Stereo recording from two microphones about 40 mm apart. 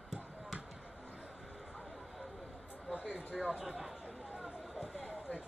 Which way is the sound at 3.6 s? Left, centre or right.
Centre.